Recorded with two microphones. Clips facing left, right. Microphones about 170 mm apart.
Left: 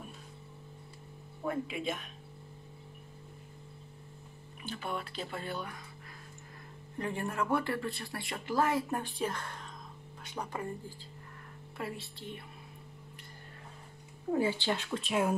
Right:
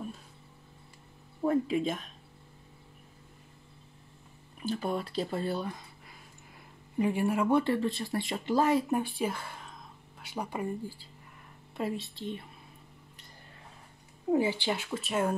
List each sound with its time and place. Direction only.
1.4 s speech: 40° right (ahead or behind)
4.6 s speech: 40° right (ahead or behind)
7.0 s speech: 10° right (ahead or behind)
7.4 s speech: 20° right (ahead or behind)
11.7 s speech: 20° right (ahead or behind)
14.3 s speech: 15° right (ahead or behind)